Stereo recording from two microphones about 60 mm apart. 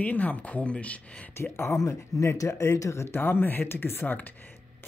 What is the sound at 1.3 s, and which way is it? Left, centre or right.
Speech, left.